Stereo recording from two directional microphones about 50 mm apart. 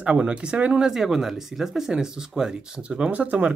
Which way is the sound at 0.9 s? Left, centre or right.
Centre.